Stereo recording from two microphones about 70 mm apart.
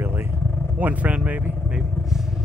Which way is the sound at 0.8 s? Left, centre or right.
Right.